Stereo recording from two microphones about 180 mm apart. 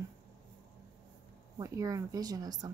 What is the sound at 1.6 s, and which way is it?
Speech, 20° right (ahead or behind).